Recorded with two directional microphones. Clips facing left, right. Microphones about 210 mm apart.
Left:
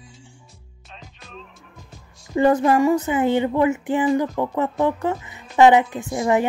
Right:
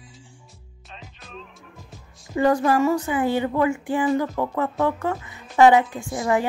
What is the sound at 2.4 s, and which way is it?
Speech, 20° left (ahead or behind).